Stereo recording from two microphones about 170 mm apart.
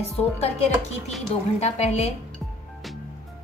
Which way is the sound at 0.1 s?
40° left (ahead or behind).